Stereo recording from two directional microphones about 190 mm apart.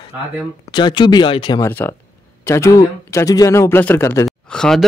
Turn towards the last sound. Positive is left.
turn(degrees=5)  # may be behind; listen again after turning